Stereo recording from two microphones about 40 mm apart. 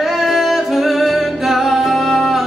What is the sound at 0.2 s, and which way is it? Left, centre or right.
Music, centre.